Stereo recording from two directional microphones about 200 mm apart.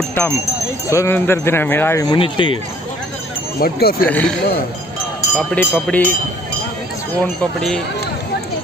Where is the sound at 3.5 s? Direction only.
50° left (ahead or behind).